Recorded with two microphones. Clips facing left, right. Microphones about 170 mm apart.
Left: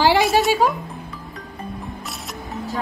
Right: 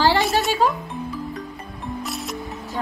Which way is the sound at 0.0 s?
15° left (ahead or behind).